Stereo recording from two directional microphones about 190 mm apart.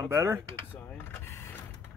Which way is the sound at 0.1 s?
15° right (ahead or behind).